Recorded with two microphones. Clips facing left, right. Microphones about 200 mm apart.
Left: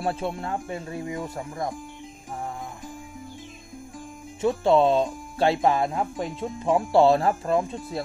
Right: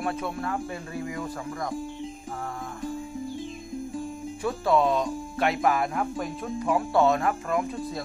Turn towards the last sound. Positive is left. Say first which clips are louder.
# left 3 dB
turn(degrees=30)  # may be behind; listen again after turning